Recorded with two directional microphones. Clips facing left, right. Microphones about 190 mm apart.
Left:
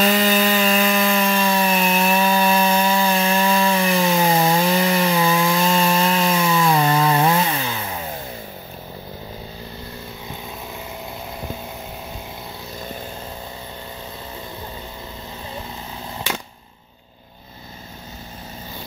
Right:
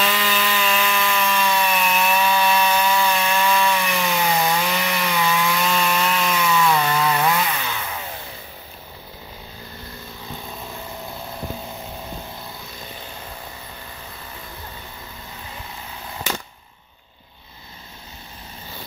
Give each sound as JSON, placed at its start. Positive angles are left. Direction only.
{"t": 0.0, "sound": "chainsaw", "side_deg": 40}